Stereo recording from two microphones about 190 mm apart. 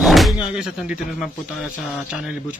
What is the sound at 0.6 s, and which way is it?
A man's voice, 5° right (ahead or behind).